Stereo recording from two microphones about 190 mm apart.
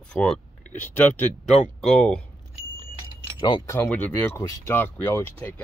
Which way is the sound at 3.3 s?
25° left (ahead or behind).